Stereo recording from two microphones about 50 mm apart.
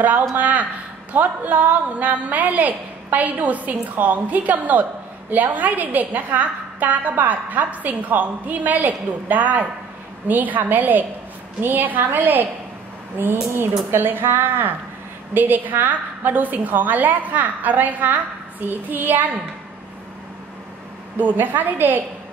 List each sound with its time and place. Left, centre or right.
0.4 s a sound: right
1.1 s a woman's voice: right
21.2 s a woman's voice: right